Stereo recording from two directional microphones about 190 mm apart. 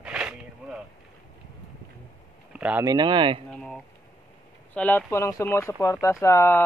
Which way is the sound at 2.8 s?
25° right (ahead or behind).